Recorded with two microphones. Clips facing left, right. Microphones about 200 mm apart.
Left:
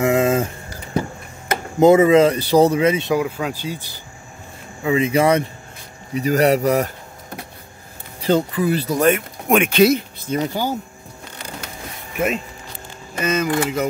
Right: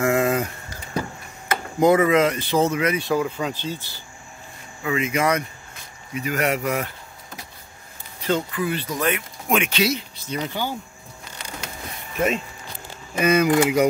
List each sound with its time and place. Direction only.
0.0 s a sound: 20° left (ahead or behind)
1.8 s speech: 25° left (ahead or behind)
3.2 s speech: 5° left (ahead or behind)
4.8 s speech: 30° left (ahead or behind)
8.2 s speech: 35° left (ahead or behind)
13.1 s speech: 10° right (ahead or behind)